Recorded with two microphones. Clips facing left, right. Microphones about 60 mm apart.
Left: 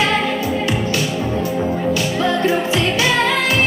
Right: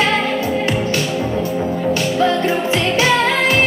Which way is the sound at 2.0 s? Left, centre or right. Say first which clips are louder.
Right 2 dB; right.